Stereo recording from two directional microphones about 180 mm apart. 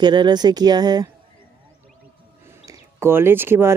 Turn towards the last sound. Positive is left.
turn(degrees=-15)  # may be behind; listen again after turning